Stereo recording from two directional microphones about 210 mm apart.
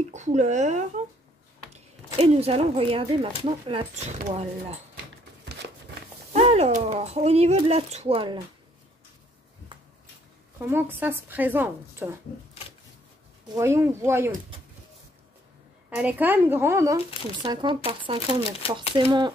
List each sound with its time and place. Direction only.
0.1 s speech: 35° right (ahead or behind)
2.1 s speech: 30° right (ahead or behind)
5.4 s a sound: 55° right (ahead or behind)
6.3 s speech: 30° right (ahead or behind)
9.7 s a sound: 25° right (ahead or behind)
10.7 s speech: 10° right (ahead or behind)
13.6 s speech: 15° right (ahead or behind)
15.9 s speech: 5° right (ahead or behind)